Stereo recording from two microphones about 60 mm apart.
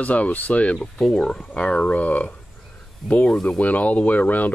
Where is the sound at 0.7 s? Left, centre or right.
Centre.